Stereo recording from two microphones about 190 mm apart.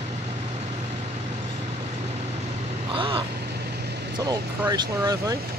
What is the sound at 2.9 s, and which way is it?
Vehicle, 25° right (ahead or behind).